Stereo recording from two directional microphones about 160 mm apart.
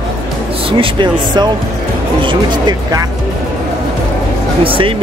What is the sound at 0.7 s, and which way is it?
Speech, 30° right (ahead or behind).